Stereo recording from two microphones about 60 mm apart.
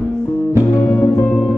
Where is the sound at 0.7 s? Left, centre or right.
Left.